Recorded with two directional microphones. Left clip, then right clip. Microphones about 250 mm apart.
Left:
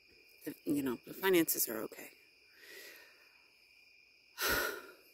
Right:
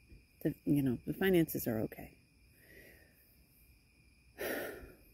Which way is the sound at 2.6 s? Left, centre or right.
Left.